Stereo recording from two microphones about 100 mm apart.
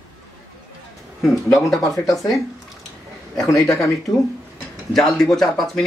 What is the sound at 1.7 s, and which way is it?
Speech, centre (ahead or behind).